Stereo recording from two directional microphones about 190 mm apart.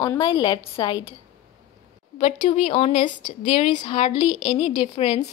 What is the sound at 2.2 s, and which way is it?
A woman's voice, 40° left (ahead or behind).